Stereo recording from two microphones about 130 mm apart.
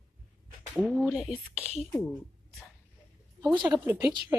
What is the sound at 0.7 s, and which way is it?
Speech, 5° right (ahead or behind).